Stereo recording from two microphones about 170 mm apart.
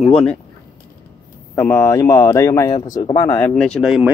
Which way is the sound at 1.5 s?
15° left (ahead or behind).